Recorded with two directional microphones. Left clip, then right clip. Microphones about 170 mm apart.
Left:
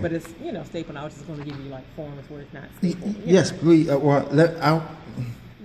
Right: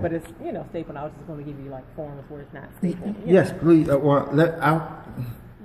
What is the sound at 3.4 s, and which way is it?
Speech, 50° left (ahead or behind).